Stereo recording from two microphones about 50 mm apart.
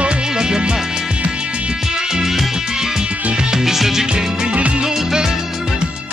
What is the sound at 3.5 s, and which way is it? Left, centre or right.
Music, centre.